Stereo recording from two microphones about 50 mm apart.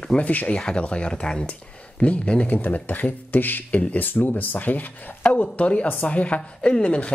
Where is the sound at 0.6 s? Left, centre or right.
Centre.